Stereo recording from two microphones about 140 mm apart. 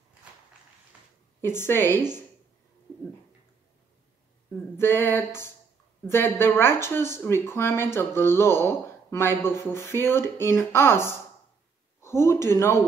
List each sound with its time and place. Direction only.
1.4 s speech: 15° left (ahead or behind)
4.7 s speech: 15° left (ahead or behind)